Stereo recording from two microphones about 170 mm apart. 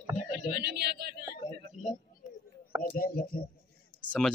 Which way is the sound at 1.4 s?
40° left (ahead or behind).